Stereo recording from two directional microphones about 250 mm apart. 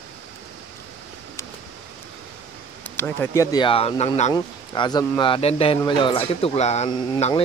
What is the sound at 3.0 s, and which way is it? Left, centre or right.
Speech, centre.